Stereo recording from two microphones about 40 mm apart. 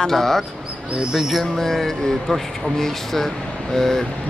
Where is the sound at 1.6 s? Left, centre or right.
Centre.